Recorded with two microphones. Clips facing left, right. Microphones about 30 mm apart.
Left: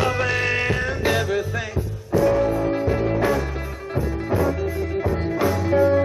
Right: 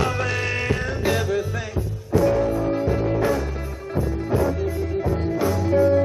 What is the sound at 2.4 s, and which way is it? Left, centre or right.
Music, centre.